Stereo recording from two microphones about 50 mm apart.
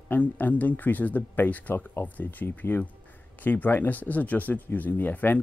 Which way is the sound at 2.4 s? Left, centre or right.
Left.